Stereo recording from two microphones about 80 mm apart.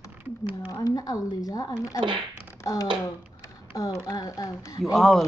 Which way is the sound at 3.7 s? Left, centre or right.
Left.